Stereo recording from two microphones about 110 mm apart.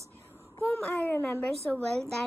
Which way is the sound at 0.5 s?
25° left (ahead or behind).